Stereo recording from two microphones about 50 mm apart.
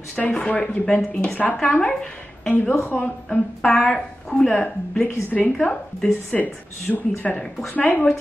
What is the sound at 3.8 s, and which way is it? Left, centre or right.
A woman's voice, left.